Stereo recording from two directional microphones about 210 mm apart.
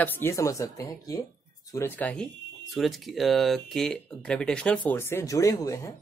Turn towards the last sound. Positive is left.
turn(degrees=15)  # may be behind; listen again after turning